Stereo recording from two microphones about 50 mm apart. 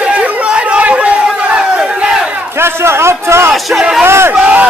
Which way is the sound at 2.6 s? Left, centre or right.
Right.